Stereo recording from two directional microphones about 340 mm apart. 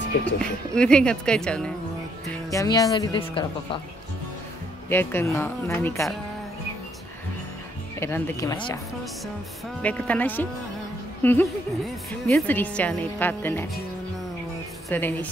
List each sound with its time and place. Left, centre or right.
0.0 s speech: left
0.7 s speech: centre
4.8 s a woman's voice: centre
8.0 s a woman's voice: centre
9.8 s speech: centre
14.9 s speech: centre